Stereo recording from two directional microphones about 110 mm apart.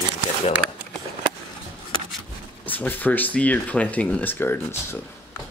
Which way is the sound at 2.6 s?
15° left (ahead or behind).